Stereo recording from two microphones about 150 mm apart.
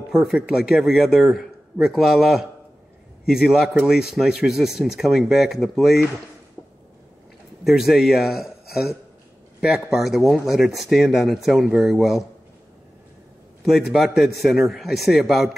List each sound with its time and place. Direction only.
0.1 s speech: 5° right (ahead or behind)
7.6 s speech: centre (ahead or behind)
13.7 s speech: centre (ahead or behind)